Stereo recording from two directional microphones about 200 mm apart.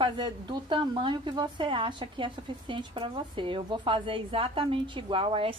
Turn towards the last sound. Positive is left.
turn(degrees=-25)  # may be behind; listen again after turning